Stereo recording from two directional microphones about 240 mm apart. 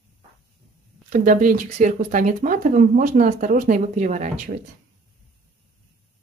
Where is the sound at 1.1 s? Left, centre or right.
Right.